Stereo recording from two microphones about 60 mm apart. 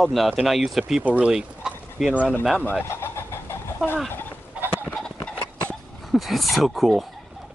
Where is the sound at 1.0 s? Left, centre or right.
Right.